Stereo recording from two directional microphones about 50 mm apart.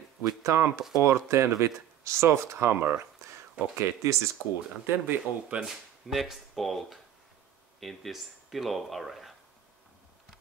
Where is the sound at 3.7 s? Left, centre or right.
Right.